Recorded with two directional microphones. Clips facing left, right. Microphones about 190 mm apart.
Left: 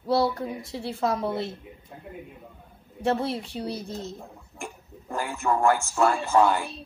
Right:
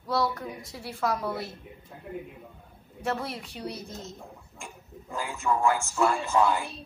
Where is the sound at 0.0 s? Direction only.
30° left (ahead or behind).